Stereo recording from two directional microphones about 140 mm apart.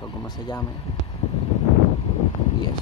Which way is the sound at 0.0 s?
30° left (ahead or behind).